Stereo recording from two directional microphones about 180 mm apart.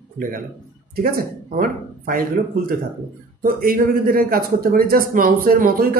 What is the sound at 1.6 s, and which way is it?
A woman's voice, 50° right (ahead or behind).